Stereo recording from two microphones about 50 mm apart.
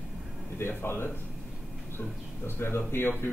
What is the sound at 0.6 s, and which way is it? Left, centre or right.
Speech, left.